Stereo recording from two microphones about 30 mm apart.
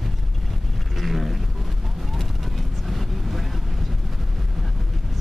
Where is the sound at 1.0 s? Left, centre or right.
Centre.